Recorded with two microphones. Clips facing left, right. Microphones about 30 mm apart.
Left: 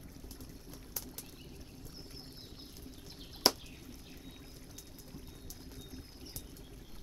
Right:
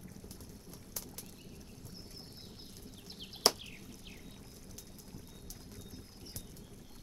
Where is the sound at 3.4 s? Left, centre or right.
Centre.